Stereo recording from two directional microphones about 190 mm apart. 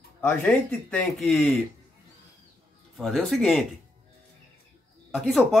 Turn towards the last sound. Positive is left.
turn(degrees=0)  # may be behind; listen again after turning